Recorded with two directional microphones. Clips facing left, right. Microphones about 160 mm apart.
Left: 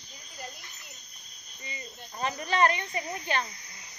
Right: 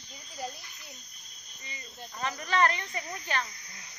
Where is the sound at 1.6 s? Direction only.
20° left (ahead or behind).